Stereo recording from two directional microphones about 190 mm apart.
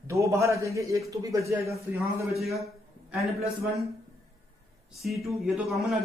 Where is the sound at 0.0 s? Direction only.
15° right (ahead or behind).